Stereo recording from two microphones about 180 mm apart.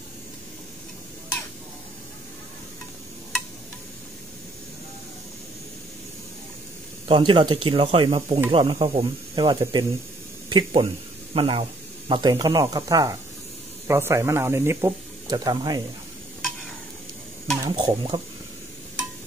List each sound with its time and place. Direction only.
7.1 s speech: 30° right (ahead or behind)
17.6 s speech: 25° right (ahead or behind)